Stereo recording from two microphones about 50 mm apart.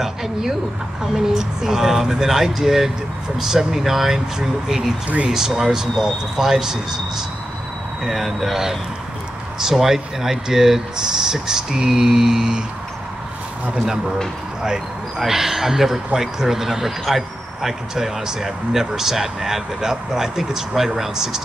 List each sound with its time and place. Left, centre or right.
0.0 s speech: centre
5.0 s speech: right
5.3 s speech: centre
13.7 s speech: centre